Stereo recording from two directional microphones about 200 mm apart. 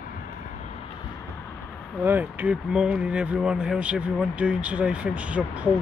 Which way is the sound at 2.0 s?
10° right (ahead or behind).